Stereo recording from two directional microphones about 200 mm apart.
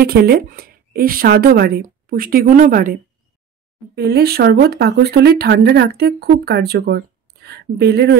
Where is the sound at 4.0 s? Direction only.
55° right (ahead or behind).